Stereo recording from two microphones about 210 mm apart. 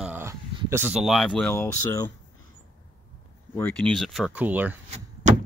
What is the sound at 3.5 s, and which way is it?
Speech, 5° left (ahead or behind).